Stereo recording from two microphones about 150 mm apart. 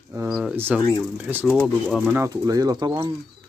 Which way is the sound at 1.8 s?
Centre (ahead or behind).